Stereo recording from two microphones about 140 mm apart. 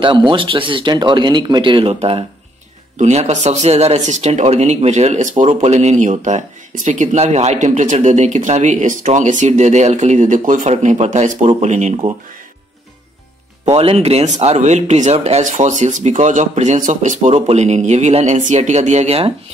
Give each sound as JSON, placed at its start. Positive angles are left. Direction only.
{"t": 0.0, "sound": "speech", "side_deg": -35}
{"t": 13.7, "sound": "speech", "side_deg": -45}